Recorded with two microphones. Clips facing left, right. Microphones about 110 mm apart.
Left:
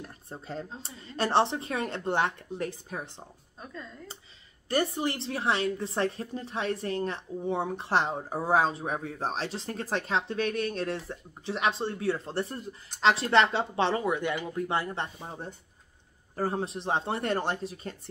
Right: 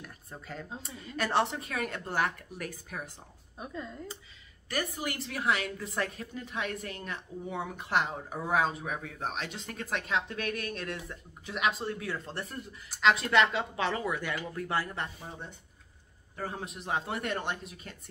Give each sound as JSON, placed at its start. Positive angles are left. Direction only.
{"t": 0.0, "sound": "speech", "side_deg": 30}
{"t": 3.5, "sound": "speech", "side_deg": -15}
{"t": 4.6, "sound": "a woman's voice", "side_deg": 30}